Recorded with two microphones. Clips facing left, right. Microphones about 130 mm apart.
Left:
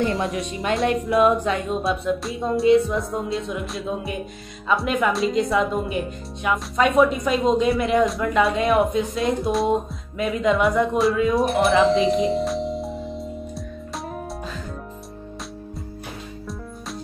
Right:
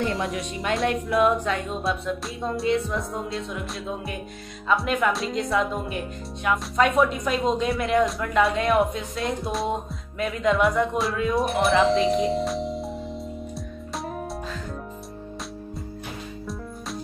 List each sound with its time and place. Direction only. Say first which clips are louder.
0.2 s speech: left 3 dB; 25° left (ahead or behind)
1.8 s speech: left 4 dB; centre (ahead or behind)